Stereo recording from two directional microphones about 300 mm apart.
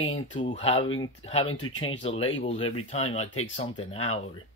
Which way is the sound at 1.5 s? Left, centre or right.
Left.